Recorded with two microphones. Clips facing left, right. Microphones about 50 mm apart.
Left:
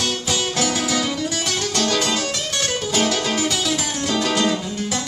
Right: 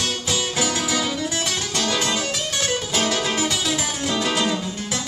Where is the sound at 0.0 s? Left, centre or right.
Centre.